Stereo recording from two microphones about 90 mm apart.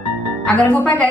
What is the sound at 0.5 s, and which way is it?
Speech, 15° left (ahead or behind).